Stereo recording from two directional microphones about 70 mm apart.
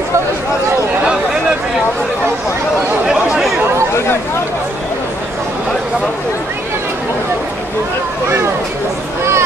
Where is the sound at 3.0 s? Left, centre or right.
Centre.